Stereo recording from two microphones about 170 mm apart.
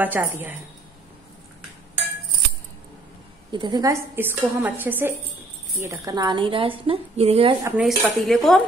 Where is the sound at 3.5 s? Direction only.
25° right (ahead or behind).